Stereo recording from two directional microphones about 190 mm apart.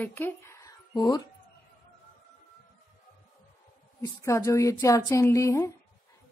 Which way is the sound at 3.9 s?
15° left (ahead or behind).